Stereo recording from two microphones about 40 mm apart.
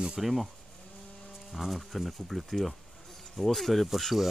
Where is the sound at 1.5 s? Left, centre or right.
Centre.